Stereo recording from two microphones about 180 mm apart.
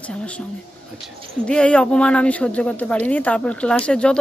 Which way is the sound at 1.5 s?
5° left (ahead or behind).